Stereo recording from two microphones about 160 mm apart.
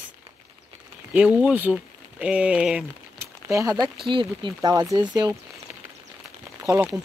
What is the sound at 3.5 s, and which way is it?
Speech, 20° right (ahead or behind).